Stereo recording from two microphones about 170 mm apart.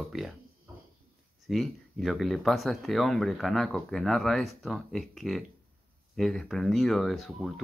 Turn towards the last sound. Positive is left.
turn(degrees=0)  # may be behind; listen again after turning